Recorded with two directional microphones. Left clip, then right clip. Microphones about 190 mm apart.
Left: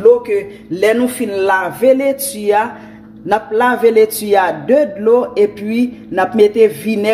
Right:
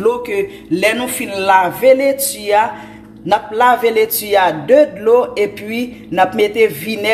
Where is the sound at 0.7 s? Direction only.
40° left (ahead or behind).